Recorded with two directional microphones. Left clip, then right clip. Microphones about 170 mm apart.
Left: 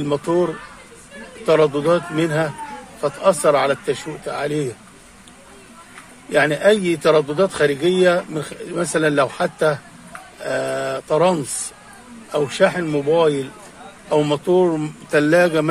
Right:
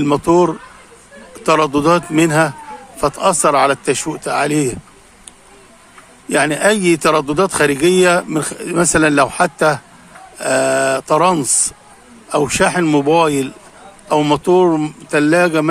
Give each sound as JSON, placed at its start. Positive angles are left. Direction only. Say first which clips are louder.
{"t": 0.0, "sound": "a man's voice", "louder": "right 6 dB", "side_deg": -35}
{"t": 6.2, "sound": "a man's voice", "louder": "right 1 dB", "side_deg": -35}
{"t": 14.0, "sound": "a man's voice", "louder": "right 4 dB", "side_deg": -30}